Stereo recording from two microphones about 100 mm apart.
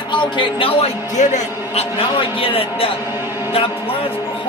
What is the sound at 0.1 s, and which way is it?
Speech, 50° left (ahead or behind).